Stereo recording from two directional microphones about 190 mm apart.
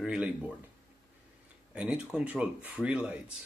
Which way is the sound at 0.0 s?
5° right (ahead or behind).